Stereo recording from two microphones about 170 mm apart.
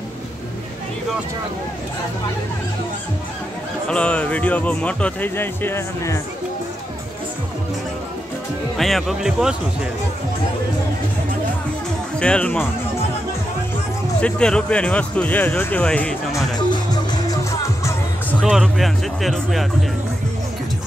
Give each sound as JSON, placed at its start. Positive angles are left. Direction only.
{"t": 3.9, "sound": "speech", "side_deg": 5}
{"t": 8.7, "sound": "speech", "side_deg": 0}
{"t": 12.2, "sound": "speech", "side_deg": 5}
{"t": 14.2, "sound": "speech", "side_deg": 5}
{"t": 16.5, "sound": "music", "side_deg": 25}
{"t": 18.4, "sound": "speech", "side_deg": 0}